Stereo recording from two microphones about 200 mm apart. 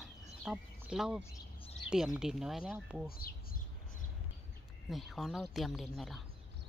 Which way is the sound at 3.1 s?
45° left (ahead or behind).